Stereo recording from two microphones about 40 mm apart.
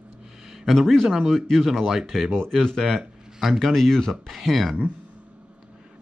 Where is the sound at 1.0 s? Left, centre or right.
Centre.